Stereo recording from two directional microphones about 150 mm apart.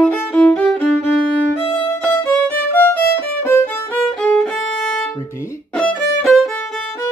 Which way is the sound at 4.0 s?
10° left (ahead or behind).